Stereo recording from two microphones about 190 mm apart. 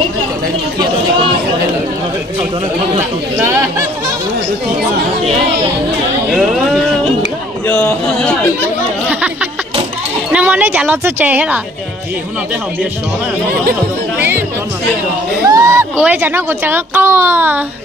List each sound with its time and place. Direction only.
3.0 s chatter: 10° right (ahead or behind)
6.3 s a sound: centre (ahead or behind)
10.3 s a woman's voice: 10° right (ahead or behind)
15.4 s speech: 15° right (ahead or behind)